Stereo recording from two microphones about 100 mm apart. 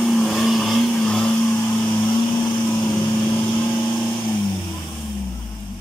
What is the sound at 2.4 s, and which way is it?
Vehicle, 30° left (ahead or behind).